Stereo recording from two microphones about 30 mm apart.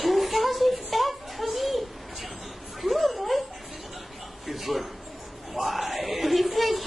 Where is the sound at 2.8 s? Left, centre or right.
Centre.